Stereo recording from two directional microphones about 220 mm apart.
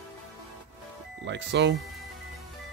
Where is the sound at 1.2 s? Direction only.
55° right (ahead or behind).